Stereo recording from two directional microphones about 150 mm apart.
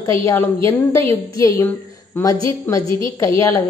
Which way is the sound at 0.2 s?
20° left (ahead or behind).